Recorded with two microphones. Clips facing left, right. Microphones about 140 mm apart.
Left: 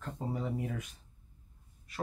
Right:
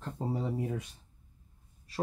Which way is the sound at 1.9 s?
30° right (ahead or behind).